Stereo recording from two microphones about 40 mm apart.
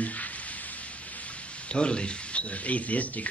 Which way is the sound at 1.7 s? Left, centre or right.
Left.